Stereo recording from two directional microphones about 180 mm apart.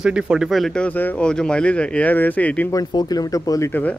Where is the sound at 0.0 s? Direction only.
5° right (ahead or behind).